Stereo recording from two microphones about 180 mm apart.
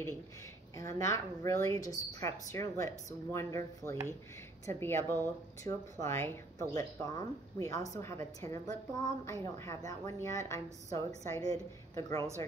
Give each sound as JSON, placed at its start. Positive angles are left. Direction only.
{"t": 0.7, "sound": "a woman's voice", "side_deg": 15}